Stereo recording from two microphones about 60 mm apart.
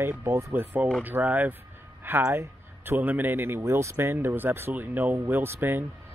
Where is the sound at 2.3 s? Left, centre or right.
Right.